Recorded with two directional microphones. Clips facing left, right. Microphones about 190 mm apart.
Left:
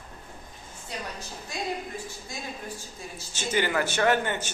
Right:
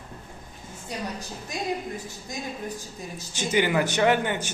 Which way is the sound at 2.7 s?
15° right (ahead or behind).